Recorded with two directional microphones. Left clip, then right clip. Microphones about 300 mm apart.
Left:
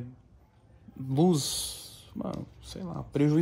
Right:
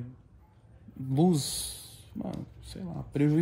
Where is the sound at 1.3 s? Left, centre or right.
Centre.